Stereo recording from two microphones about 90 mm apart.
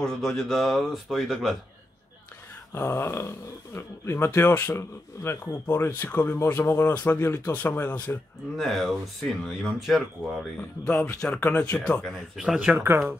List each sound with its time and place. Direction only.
0.0 s speech: 5° left (ahead or behind)
2.7 s speech: 30° left (ahead or behind)
8.5 s speech: centre (ahead or behind)
10.9 s speech: 15° left (ahead or behind)
12.4 s speech: 10° right (ahead or behind)
12.7 s speech: 25° right (ahead or behind)